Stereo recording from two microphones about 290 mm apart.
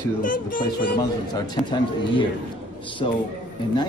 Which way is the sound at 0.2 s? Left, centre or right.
Left.